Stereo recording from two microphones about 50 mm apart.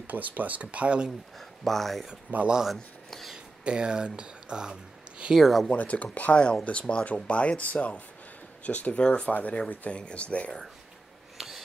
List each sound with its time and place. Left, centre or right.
0.0 s speech: right
1.6 s speech: centre
2.3 s speech: right
2.6 s speech: centre
3.6 s speech: centre
5.3 s speech: centre
5.7 s speech: left
9.3 s speech: left
11.3 s a sound: centre